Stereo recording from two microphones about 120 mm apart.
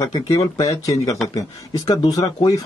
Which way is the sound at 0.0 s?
30° left (ahead or behind).